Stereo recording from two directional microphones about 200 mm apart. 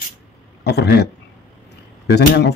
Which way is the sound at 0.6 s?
55° left (ahead or behind).